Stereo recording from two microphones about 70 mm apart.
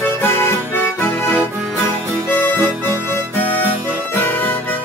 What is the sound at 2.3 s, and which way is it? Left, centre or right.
Music, left.